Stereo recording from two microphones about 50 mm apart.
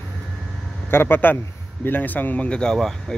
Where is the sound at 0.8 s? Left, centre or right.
Left.